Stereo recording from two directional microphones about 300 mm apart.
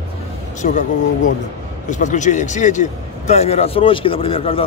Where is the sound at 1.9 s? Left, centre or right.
Left.